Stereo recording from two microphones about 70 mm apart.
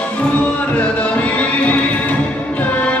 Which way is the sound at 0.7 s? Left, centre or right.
Left.